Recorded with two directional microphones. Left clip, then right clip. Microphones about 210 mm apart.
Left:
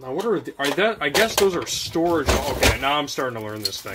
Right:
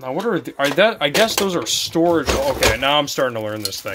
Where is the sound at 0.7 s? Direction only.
50° right (ahead or behind).